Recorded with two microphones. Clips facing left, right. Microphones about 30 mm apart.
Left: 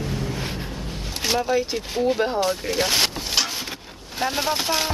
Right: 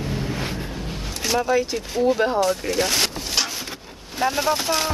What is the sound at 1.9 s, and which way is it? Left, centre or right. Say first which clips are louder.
Speech: right 2 dB; centre.